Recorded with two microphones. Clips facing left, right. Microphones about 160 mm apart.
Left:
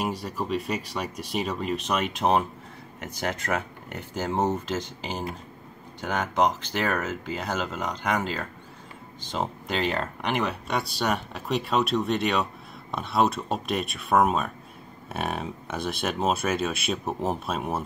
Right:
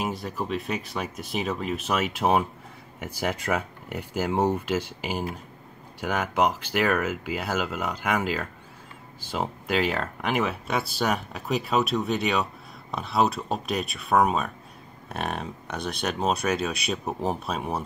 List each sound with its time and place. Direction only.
0.0 s speech: centre (ahead or behind)